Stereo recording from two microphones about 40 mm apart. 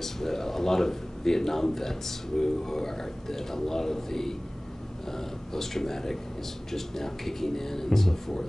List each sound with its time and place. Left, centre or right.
0.0 s a man's voice: centre